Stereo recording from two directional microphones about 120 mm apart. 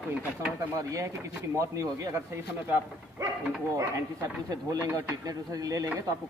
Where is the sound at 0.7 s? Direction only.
25° right (ahead or behind).